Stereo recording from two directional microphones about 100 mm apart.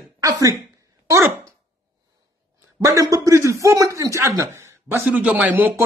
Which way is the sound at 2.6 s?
30° right (ahead or behind).